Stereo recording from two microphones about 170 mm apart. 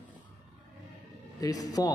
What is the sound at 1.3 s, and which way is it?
Speech, 20° left (ahead or behind).